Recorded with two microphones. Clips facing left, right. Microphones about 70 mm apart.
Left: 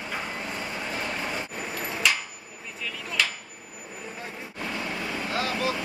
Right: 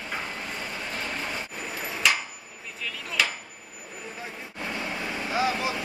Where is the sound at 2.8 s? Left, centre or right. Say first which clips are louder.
Right 1 dB; centre.